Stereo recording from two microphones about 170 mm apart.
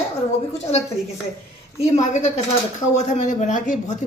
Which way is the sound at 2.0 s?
45° left (ahead or behind).